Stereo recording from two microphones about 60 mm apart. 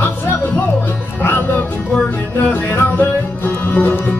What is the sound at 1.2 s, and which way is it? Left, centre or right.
Music, left.